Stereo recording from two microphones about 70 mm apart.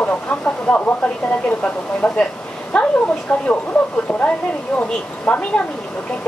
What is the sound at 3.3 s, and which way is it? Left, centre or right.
Speech, centre.